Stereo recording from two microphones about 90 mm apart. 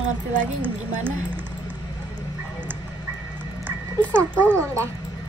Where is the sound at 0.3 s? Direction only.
20° right (ahead or behind).